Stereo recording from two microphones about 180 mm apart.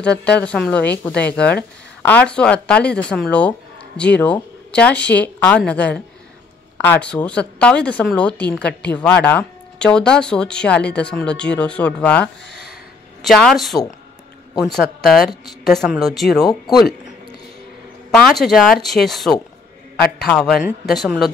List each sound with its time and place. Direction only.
0.0 s a woman's voice: 5° left (ahead or behind)
12.4 s a sound: 65° left (ahead or behind)
13.2 s speech: centre (ahead or behind)
16.4 s speech: 25° left (ahead or behind)
18.1 s speech: centre (ahead or behind)